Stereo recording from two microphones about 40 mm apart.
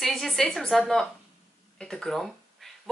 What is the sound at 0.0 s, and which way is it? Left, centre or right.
Speech, centre.